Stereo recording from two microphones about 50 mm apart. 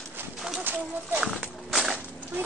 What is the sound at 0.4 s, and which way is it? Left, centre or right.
Bird, centre.